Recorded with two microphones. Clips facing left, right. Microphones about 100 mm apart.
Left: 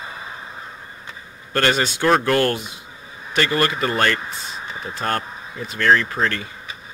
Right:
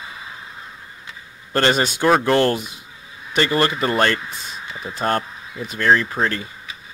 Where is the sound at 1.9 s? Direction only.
10° right (ahead or behind).